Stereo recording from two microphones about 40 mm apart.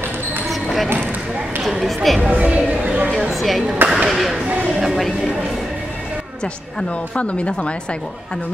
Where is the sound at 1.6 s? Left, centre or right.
Centre.